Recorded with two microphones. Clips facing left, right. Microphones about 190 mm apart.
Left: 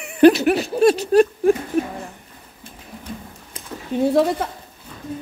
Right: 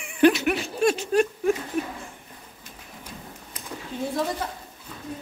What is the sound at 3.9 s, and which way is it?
Speech, 65° left (ahead or behind).